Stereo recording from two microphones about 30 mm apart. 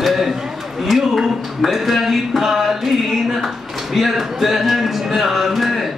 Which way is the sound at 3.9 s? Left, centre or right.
Centre.